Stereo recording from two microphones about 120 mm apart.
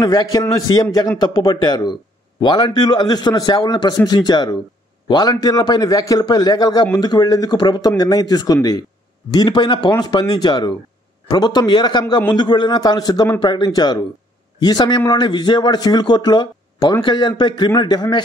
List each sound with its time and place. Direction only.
0.0 s a man's voice: 35° left (ahead or behind)